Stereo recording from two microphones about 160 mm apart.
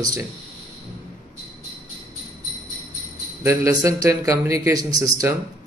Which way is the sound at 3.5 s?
20° right (ahead or behind).